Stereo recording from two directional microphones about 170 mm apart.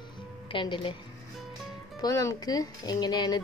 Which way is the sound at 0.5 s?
30° left (ahead or behind).